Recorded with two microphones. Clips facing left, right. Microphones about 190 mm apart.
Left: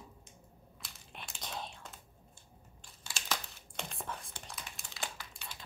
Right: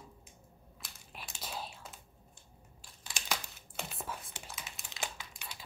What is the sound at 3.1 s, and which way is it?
Crumpling, 15° right (ahead or behind).